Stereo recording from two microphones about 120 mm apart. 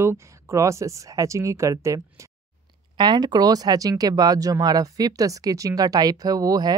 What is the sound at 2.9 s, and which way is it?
Speech, 40° right (ahead or behind).